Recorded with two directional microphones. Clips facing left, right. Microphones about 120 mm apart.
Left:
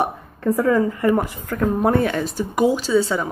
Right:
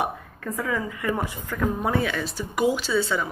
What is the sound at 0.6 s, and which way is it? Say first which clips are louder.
A woman's voice: left 9 dB; 45° left (ahead or behind).